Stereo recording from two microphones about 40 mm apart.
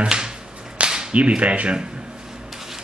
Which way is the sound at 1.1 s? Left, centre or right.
Right.